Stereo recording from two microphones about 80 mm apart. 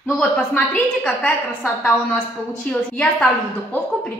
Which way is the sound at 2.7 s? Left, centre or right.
Centre.